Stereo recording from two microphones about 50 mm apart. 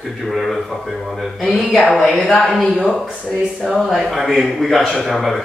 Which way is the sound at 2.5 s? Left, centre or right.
Centre.